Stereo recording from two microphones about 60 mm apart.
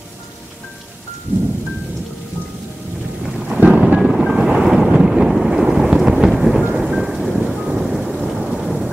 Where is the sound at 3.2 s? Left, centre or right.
Centre.